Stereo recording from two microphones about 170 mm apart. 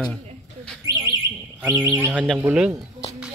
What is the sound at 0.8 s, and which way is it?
Alarm, 20° right (ahead or behind).